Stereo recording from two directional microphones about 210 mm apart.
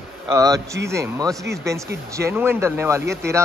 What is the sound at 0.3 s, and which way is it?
A man's voice, 15° right (ahead or behind).